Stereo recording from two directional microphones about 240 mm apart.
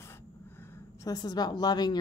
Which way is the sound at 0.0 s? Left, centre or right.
Centre.